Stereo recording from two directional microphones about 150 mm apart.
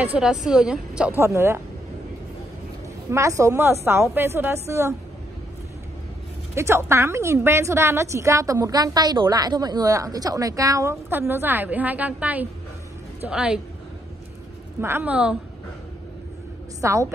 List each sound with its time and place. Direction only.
0.0 s a woman's voice: 5° right (ahead or behind)
1.2 s a woman's voice: 15° right (ahead or behind)
3.1 s a woman's voice: 20° right (ahead or behind)
6.5 s a woman's voice: 15° right (ahead or behind)
14.8 s a woman's voice: 15° right (ahead or behind)
16.8 s a woman's voice: 20° right (ahead or behind)